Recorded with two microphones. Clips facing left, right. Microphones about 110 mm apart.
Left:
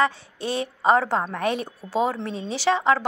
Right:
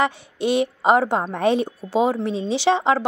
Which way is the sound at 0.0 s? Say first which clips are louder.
Right 2 dB; 20° right (ahead or behind).